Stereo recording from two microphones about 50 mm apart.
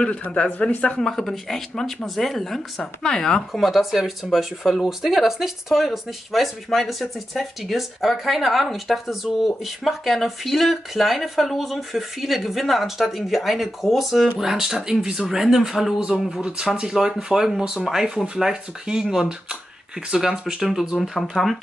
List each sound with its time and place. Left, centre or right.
0.6 s speech: left
0.9 s speech: centre
3.5 s speech: centre
16.3 s speech: centre
21.3 s speech: centre